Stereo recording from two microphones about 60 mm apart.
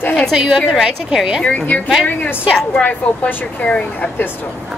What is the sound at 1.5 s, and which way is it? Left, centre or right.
Speech, left.